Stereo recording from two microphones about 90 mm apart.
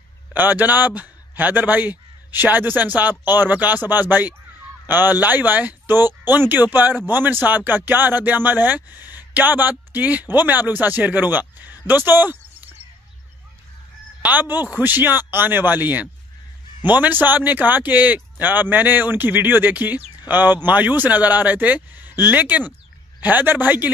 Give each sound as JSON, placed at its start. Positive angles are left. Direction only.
{"t": 0.3, "sound": "a man's voice", "side_deg": -20}
{"t": 14.2, "sound": "speech", "side_deg": -20}